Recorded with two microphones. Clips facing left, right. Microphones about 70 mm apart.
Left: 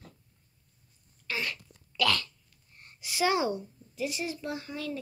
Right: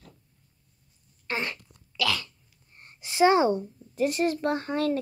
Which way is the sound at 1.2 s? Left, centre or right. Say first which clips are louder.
Right 3 dB; right.